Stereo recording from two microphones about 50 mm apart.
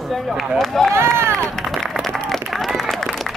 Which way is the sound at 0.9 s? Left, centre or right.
Right.